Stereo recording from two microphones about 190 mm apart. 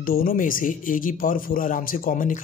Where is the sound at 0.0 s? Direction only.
50° left (ahead or behind).